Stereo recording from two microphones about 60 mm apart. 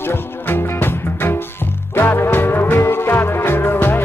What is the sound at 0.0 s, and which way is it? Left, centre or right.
Music, left.